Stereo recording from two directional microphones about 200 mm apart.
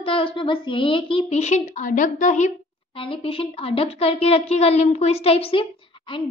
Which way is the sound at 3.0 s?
25° left (ahead or behind).